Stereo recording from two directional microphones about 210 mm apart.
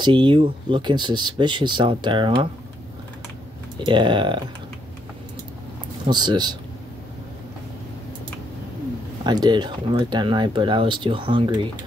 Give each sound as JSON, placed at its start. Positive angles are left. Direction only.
{"t": 0.0, "sound": "speech", "side_deg": -25}
{"t": 3.7, "sound": "speech", "side_deg": -20}
{"t": 6.0, "sound": "speech", "side_deg": -20}
{"t": 9.2, "sound": "speech", "side_deg": -20}